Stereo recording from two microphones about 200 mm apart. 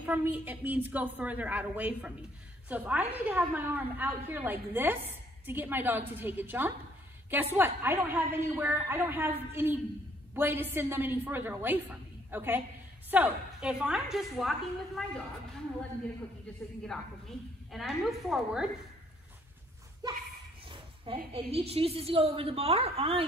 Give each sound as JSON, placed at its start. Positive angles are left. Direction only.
{"t": 0.0, "sound": "a woman's voice", "side_deg": -10}
{"t": 17.6, "sound": "a woman's voice", "side_deg": 0}
{"t": 20.0, "sound": "speech", "side_deg": -20}
{"t": 20.7, "sound": "a sound", "side_deg": -25}
{"t": 21.3, "sound": "a woman's voice", "side_deg": -30}